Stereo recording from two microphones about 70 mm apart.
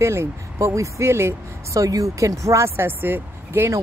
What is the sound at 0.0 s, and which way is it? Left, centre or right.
Speech, right.